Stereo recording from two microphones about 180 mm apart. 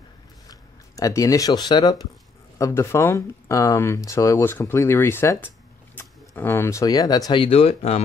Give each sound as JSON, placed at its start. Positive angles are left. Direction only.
{"t": 0.5, "sound": "speech", "side_deg": 20}